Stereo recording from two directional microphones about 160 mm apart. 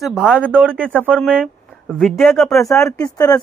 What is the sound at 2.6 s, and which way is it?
Speech, 20° left (ahead or behind).